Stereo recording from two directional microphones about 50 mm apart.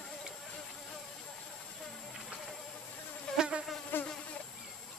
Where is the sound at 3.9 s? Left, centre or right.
Left.